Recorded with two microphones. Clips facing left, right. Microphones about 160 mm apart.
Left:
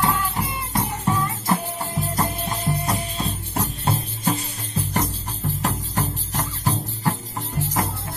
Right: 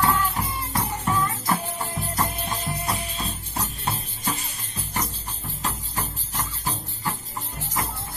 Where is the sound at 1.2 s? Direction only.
35° left (ahead or behind).